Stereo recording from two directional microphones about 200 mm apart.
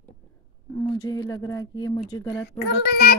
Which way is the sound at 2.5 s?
55° left (ahead or behind).